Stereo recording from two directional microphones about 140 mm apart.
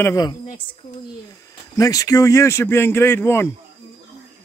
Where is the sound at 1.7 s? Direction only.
25° left (ahead or behind).